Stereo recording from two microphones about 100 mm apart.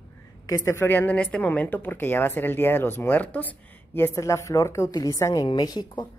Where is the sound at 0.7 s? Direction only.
20° left (ahead or behind); by 6.0 s 45° left (ahead or behind).